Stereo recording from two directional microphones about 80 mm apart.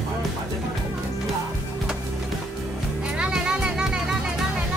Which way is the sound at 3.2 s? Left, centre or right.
Centre.